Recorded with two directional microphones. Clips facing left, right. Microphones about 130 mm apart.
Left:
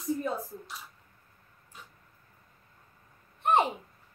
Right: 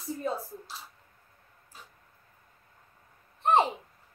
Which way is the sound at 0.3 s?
30° right (ahead or behind).